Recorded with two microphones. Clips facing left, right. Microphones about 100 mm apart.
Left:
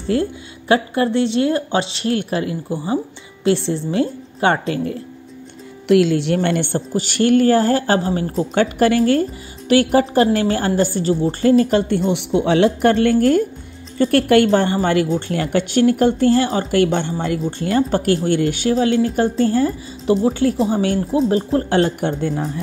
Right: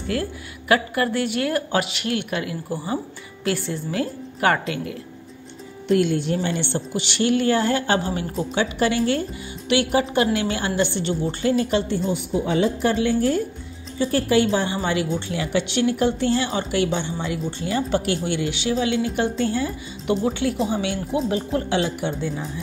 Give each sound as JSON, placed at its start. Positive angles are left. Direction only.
{"t": 0.0, "sound": "speech", "side_deg": 30}
{"t": 5.9, "sound": "speech", "side_deg": 85}
{"t": 8.5, "sound": "speech", "side_deg": 45}
{"t": 12.1, "sound": "a woman's voice", "side_deg": 75}